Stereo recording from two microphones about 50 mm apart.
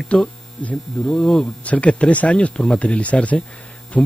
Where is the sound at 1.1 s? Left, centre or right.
Centre.